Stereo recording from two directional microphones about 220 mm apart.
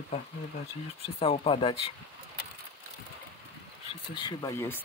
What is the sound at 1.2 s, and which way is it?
Speech, 25° left (ahead or behind).